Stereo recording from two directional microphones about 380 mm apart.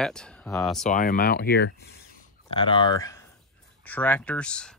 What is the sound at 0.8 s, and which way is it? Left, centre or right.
Speech, centre.